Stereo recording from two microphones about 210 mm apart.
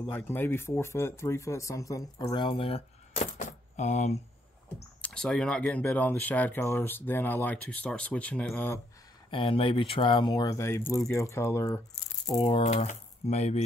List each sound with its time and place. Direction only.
0.1 s speech: 10° left (ahead or behind); by 4.2 s 30° left (ahead or behind)
5.0 s speech: 5° left (ahead or behind)
9.3 s speech: 25° left (ahead or behind)
12.3 s speech: 25° left (ahead or behind)